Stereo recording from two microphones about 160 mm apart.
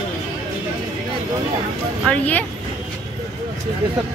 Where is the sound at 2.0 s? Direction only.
10° left (ahead or behind).